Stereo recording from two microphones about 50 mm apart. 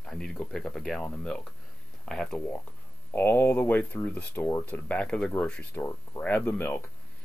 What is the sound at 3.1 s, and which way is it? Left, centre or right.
Speech, left.